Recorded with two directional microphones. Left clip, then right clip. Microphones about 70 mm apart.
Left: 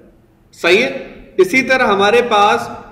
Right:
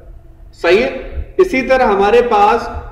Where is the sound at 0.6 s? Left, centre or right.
Centre.